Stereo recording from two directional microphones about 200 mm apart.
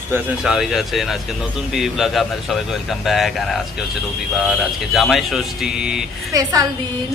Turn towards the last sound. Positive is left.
turn(degrees=-15)  # may be behind; listen again after turning